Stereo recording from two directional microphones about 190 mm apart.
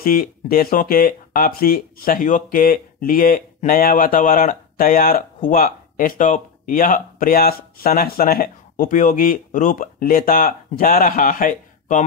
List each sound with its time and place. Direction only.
0.0 s speech: 50° left (ahead or behind)